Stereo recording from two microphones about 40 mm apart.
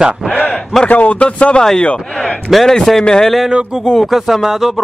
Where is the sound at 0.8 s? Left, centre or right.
Left.